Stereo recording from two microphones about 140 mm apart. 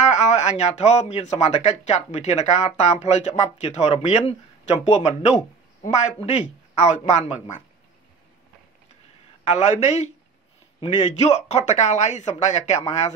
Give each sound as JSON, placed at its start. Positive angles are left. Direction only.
{"t": 0.1, "sound": "speech", "side_deg": 55}
{"t": 9.4, "sound": "speech", "side_deg": 55}
{"t": 11.1, "sound": "speech", "side_deg": 55}